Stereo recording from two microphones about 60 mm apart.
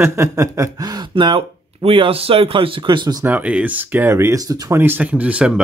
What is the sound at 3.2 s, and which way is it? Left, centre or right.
Speech, right.